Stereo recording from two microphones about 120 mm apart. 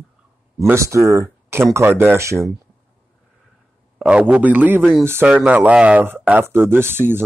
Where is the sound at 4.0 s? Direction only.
10° right (ahead or behind).